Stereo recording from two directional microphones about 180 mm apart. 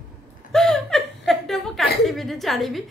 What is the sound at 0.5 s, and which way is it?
Chuckle, 5° left (ahead or behind).